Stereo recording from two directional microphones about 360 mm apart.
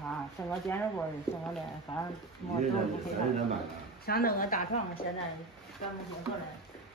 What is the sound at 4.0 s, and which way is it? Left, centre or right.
A woman's voice, left.